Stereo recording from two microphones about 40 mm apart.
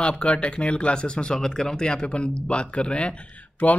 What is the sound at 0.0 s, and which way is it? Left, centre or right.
Speech, left.